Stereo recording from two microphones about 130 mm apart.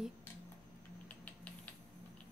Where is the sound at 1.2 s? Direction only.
10° left (ahead or behind).